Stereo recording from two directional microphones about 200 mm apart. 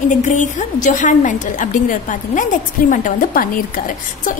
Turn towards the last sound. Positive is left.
turn(degrees=40)  # may be behind; listen again after turning